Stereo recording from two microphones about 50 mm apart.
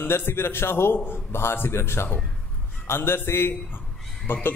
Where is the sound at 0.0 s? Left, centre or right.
Left.